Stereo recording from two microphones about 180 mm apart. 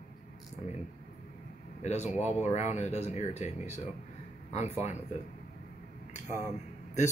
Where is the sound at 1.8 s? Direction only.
40° left (ahead or behind).